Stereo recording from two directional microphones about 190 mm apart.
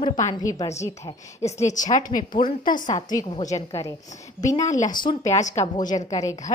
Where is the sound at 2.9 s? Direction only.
20° left (ahead or behind).